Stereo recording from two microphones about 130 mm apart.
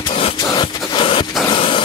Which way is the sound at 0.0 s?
45° left (ahead or behind).